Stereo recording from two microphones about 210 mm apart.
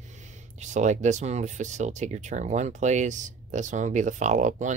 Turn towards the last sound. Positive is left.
turn(degrees=-35)  # may be behind; listen again after turning